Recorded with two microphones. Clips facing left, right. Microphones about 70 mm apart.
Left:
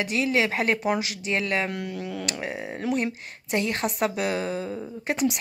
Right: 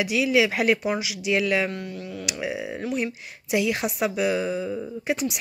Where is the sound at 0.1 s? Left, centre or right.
Left.